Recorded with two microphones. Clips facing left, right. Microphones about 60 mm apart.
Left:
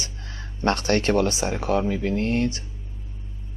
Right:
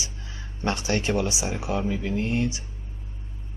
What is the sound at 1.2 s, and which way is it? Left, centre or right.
Speech, left.